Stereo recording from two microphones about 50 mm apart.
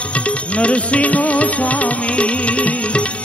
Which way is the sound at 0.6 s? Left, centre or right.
Left.